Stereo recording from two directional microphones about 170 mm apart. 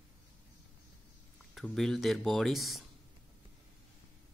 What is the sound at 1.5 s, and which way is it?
Speech, centre (ahead or behind).